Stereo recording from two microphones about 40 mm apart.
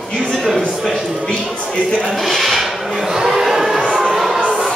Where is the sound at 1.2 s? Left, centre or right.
Centre.